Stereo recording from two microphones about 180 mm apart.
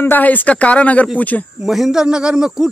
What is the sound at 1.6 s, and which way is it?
Speech, centre (ahead or behind).